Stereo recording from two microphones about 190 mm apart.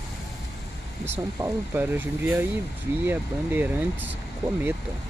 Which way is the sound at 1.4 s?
10° right (ahead or behind).